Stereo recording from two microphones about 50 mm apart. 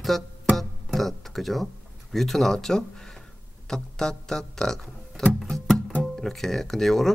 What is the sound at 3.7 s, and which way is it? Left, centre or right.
Music, centre.